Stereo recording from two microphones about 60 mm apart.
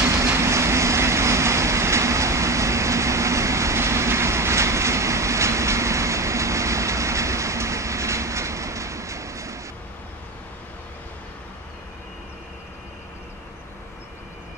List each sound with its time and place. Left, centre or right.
0.3 s vehicle: right